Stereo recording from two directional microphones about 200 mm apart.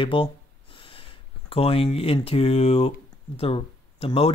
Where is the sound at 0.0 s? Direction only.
25° left (ahead or behind).